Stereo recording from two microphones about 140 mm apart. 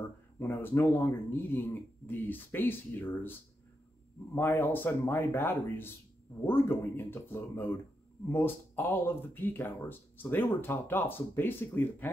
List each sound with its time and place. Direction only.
0.4 s speech: 15° left (ahead or behind)